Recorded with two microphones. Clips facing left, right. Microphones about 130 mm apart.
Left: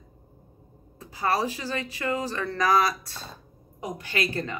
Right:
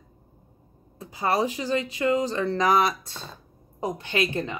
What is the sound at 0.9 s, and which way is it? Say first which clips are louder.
A woman's voice: right 2 dB; 20° right (ahead or behind).